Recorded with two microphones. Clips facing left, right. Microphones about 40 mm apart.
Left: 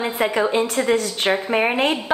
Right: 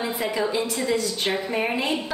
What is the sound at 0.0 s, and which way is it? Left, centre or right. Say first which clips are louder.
A woman's voice: left 5 dB; left.